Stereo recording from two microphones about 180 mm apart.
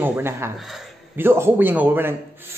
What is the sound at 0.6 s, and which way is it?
Speech, centre (ahead or behind).